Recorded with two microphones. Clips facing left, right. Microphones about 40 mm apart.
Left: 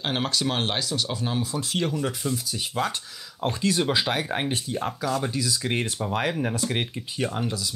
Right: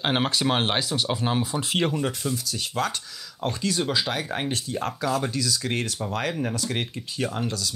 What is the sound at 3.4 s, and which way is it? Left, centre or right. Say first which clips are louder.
Speech: left 2 dB; left.